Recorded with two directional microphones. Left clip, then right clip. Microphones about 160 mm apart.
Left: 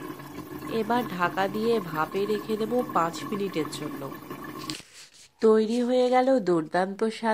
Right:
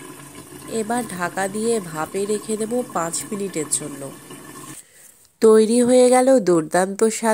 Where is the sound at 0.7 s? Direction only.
10° right (ahead or behind).